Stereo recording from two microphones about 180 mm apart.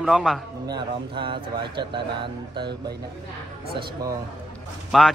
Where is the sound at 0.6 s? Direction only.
25° right (ahead or behind).